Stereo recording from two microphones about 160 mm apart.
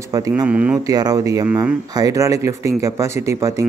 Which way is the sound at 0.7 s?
25° right (ahead or behind).